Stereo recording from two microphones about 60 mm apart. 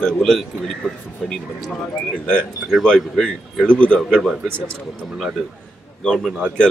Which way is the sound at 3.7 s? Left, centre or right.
Centre.